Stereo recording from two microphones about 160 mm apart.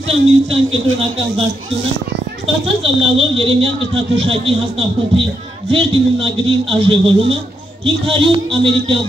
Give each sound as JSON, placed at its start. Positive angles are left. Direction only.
{"t": 0.1, "sound": "a man's voice", "side_deg": -40}
{"t": 2.6, "sound": "a man's voice", "side_deg": -35}